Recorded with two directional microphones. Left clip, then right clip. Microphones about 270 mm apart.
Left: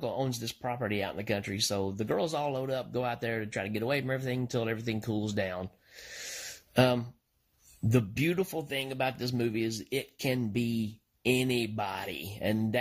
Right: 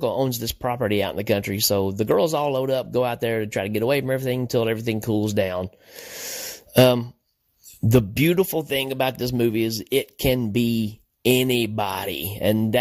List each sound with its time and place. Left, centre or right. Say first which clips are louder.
0.0 s speech: right 10 dB; right
6.7 s speech: right 10 dB; right